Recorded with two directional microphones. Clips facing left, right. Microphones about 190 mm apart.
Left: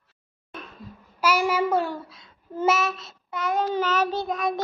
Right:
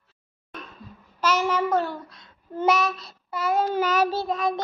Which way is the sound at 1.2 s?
10° left (ahead or behind).